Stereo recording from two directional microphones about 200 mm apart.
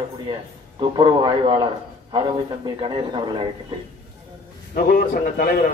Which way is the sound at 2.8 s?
25° right (ahead or behind).